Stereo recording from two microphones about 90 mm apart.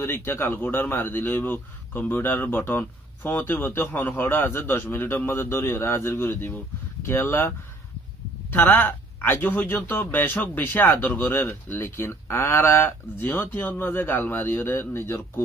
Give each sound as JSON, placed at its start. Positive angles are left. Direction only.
{"t": 0.0, "sound": "a man's voice", "side_deg": 30}